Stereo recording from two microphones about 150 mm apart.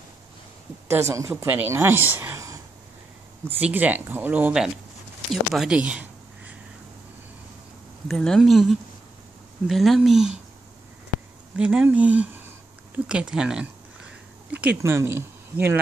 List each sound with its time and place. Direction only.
0.8 s speech: 20° right (ahead or behind)
5.3 s a sound: centre (ahead or behind)
8.1 s speech: centre (ahead or behind)
11.5 s speech: 5° right (ahead or behind)